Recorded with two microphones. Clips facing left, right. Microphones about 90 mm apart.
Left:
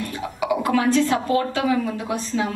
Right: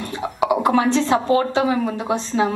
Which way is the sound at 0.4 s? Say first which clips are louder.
Right 4 dB; 25° right (ahead or behind).